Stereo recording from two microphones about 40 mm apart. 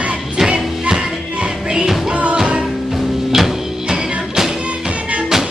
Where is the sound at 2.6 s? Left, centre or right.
Centre.